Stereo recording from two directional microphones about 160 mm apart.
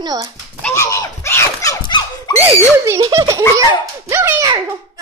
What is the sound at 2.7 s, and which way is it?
Speech, 20° right (ahead or behind).